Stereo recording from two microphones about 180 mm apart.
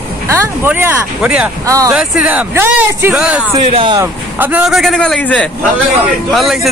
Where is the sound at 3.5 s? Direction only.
30° right (ahead or behind).